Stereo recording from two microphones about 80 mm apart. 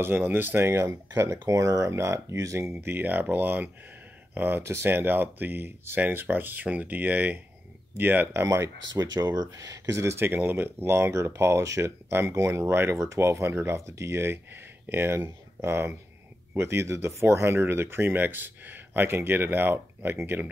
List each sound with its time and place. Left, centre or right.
0.0 s speech: right
8.5 s speech: right